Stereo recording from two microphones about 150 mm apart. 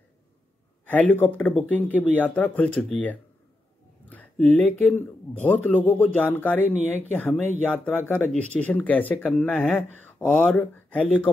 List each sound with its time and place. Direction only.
0.8 s speech: 10° left (ahead or behind)